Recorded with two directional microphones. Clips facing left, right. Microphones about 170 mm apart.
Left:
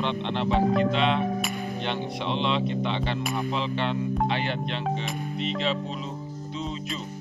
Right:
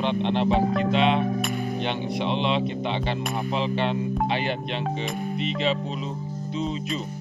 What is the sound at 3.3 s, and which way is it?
Mantra, 15° right (ahead or behind).